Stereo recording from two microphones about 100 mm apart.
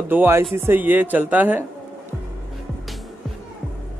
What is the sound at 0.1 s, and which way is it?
Speech, 25° right (ahead or behind).